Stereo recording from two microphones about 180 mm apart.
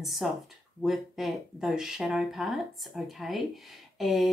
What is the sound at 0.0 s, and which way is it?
Speech, centre (ahead or behind).